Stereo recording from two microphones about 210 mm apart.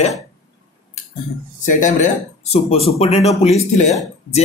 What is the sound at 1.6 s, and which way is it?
Speech, 35° left (ahead or behind).